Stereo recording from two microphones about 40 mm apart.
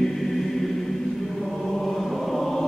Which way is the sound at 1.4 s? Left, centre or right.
Centre.